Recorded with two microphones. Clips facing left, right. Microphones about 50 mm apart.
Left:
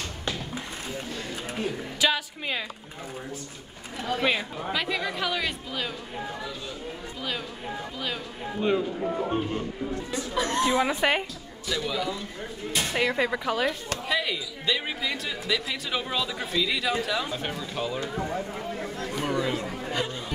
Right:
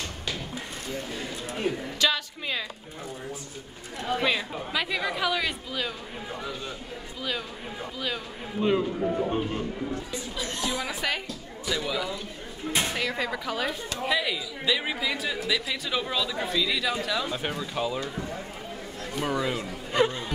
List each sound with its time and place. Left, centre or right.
2.0 s a sound: centre
4.2 s speech: centre
4.7 s a man's voice: centre
10.1 s speech: left
11.7 s a man's voice: centre
12.9 s speech: centre
14.0 s a man's voice: centre
17.4 s a man's voice: centre
18.0 s speech: left
19.2 s a man's voice: centre